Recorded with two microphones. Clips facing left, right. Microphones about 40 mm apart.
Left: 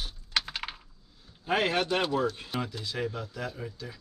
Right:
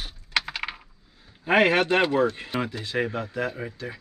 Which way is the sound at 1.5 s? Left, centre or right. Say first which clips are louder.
Right 7 dB; right.